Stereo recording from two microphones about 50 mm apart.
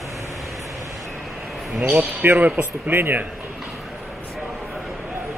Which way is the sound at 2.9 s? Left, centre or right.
Right.